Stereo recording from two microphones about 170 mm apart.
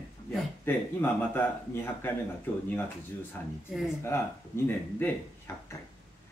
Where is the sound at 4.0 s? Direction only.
15° left (ahead or behind).